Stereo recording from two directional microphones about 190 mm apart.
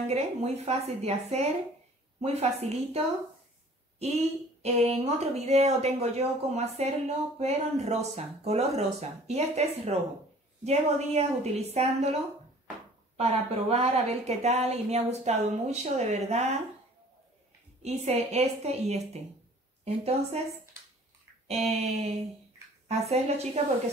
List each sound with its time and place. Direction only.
0.0 s speech: 35° right (ahead or behind)
4.6 s speech: 35° right (ahead or behind)
13.2 s speech: 35° right (ahead or behind)
17.8 s speech: 35° right (ahead or behind)
21.6 s speech: 35° right (ahead or behind)